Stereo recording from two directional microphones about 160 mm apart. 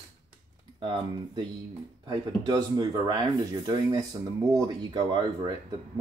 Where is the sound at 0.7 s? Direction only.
30° right (ahead or behind).